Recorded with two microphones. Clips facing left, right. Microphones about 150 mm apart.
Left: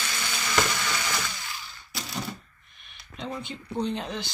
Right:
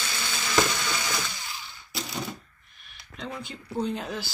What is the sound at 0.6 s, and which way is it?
Ratchet, 10° right (ahead or behind).